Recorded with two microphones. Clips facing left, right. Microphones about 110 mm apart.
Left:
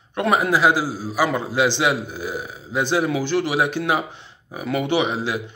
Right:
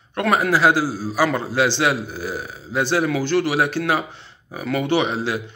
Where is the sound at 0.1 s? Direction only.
15° left (ahead or behind).